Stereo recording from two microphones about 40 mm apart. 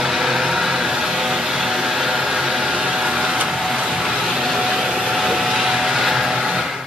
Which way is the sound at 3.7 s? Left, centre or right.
Centre.